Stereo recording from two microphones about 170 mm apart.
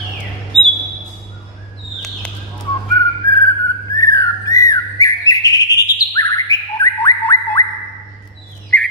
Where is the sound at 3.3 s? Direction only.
20° left (ahead or behind).